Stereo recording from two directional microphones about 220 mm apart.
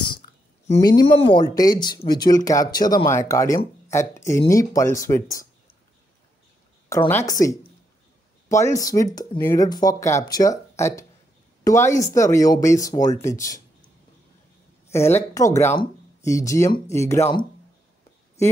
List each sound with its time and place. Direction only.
0.8 s speech: 20° left (ahead or behind)
6.9 s speech: 10° left (ahead or behind)
14.9 s speech: 10° left (ahead or behind)